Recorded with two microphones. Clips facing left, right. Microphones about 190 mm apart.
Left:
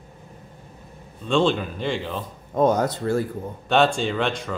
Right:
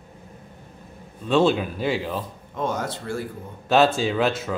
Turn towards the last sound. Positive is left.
turn(degrees=-5)  # may be behind; listen again after turning